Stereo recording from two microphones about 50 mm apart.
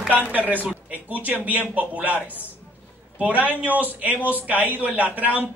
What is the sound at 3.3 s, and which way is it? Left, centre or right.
A man's voice, right.